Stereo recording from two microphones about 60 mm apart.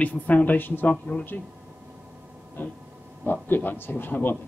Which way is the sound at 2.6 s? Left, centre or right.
Left.